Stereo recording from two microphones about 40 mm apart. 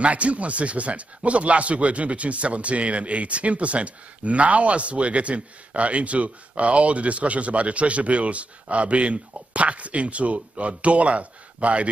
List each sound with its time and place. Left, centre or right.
0.0 s speech: right